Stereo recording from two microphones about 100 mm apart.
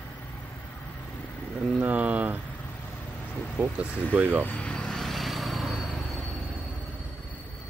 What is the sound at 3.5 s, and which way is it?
Speech, 15° right (ahead or behind).